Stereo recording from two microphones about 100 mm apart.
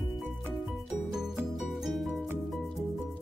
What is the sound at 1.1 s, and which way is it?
Music, 5° right (ahead or behind).